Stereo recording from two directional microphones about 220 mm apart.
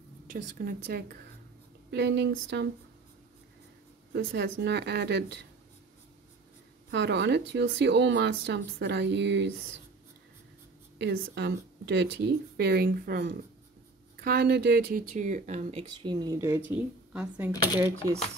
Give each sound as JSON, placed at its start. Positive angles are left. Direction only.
{"t": 0.3, "sound": "speech", "side_deg": -40}
{"t": 4.1, "sound": "speech", "side_deg": -55}
{"t": 6.9, "sound": "speech", "side_deg": -50}
{"t": 11.0, "sound": "speech", "side_deg": -50}